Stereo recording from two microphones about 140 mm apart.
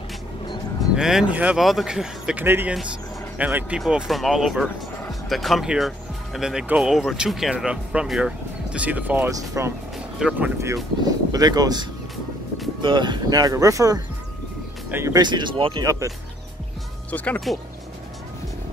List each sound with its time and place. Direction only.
0.9 s speech: 5° right (ahead or behind)
2.4 s speech: 15° right (ahead or behind)
3.8 s speech: centre (ahead or behind)
9.3 s speech: 25° right (ahead or behind)
10.1 s speech: 5° right (ahead or behind)
11.3 s speech: 30° right (ahead or behind)
15.1 s speech: 30° right (ahead or behind)
15.8 s speech: 20° right (ahead or behind)
17.1 s speech: 10° left (ahead or behind)